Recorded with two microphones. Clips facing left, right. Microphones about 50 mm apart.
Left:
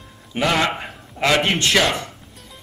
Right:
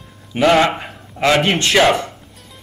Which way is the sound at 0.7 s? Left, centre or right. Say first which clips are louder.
Right 2 dB; centre.